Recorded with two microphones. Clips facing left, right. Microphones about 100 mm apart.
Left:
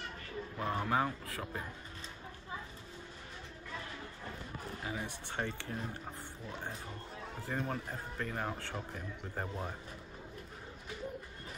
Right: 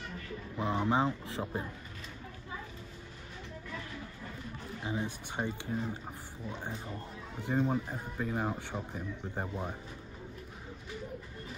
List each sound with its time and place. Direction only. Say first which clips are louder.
0.6 s speech: right 3 dB; 20° right (ahead or behind)
4.9 s speech: right 5 dB; 25° right (ahead or behind)
5.2 s speech: right 2 dB; 15° right (ahead or behind)
7.3 s speech: right 7 dB; 20° right (ahead or behind)